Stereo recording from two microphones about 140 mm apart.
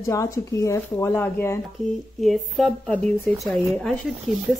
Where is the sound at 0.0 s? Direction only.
25° left (ahead or behind).